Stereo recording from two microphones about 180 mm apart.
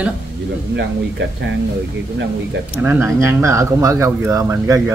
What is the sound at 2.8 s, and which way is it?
Speech, 10° right (ahead or behind).